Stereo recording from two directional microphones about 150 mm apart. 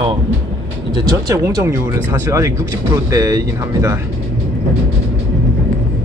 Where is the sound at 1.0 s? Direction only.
25° right (ahead or behind).